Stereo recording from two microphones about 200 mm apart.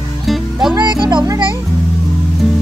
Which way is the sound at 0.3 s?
Centre (ahead or behind).